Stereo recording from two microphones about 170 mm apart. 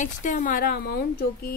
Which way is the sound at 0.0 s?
50° left (ahead or behind).